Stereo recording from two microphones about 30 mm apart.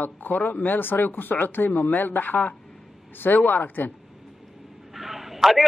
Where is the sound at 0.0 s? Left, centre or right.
Left.